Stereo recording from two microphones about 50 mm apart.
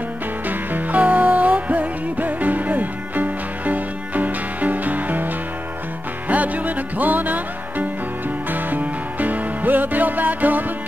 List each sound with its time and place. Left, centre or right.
0.5 s music: right
8.5 s music: right